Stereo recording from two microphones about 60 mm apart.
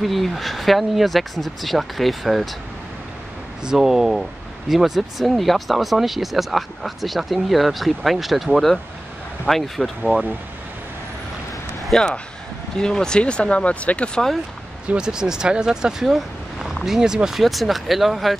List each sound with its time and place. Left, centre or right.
0.0 s speech: centre
3.6 s speech: centre
10.1 s speech: right
11.9 s speech: centre
14.9 s speech: centre